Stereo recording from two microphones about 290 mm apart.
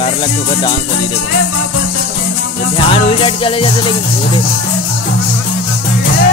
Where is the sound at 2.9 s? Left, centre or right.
Centre.